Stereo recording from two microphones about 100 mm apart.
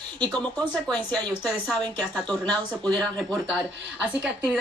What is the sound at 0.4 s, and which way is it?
Speech, 10° left (ahead or behind).